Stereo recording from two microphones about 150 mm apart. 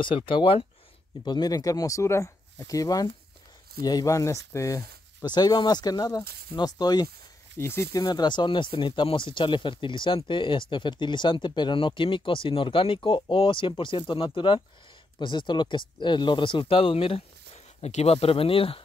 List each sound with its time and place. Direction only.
0.0 s speech: 35° left (ahead or behind)
7.5 s speech: 15° left (ahead or behind)
7.9 s speech: 25° left (ahead or behind)